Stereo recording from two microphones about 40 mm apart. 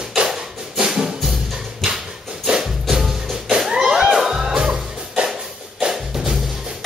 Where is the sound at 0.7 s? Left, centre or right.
Centre.